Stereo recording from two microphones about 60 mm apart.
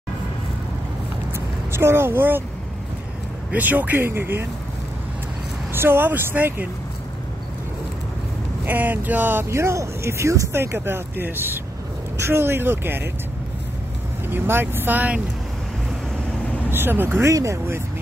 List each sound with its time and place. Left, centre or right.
1.3 s vehicle: right
3.5 s speech: right
5.7 s speech: right
8.6 s speech: right
9.6 s speech: right
10.5 s speech: right
14.3 s speech: right
16.7 s speech: right
17.2 s speech: right